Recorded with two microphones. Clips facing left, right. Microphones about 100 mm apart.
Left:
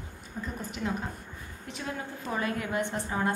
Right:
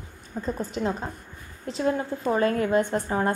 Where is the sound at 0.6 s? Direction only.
35° right (ahead or behind).